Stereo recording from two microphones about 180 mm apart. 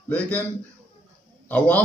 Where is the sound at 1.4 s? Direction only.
10° left (ahead or behind).